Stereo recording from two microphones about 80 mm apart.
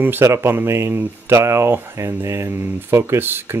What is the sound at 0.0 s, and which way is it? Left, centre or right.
Speech, right.